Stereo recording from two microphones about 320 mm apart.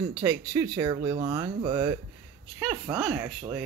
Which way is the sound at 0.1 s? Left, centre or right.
Centre.